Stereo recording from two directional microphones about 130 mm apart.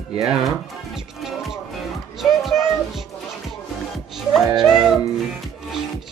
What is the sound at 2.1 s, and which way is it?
Child singing, centre (ahead or behind).